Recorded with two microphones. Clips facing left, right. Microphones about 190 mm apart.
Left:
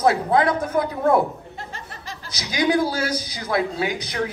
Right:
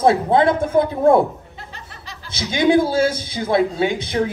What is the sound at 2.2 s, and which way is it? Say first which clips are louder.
A man's voice: right 5 dB; 25° right (ahead or behind).